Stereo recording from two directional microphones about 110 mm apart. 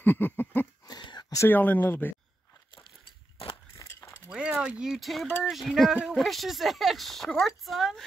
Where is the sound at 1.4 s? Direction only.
15° left (ahead or behind).